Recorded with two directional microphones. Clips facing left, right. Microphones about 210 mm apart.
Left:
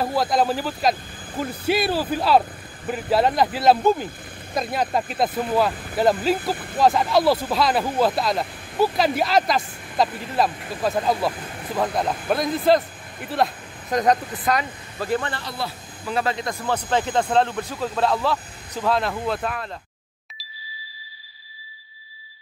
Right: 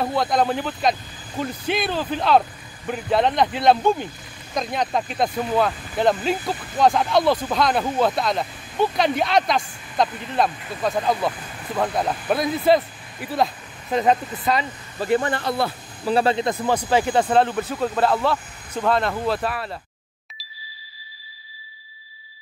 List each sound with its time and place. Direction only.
0.0 s speech: centre (ahead or behind)
15.3 s speech: 55° right (ahead or behind)
16.1 s speech: 30° right (ahead or behind)
16.6 s speech: 10° right (ahead or behind)
20.3 s ding: centre (ahead or behind)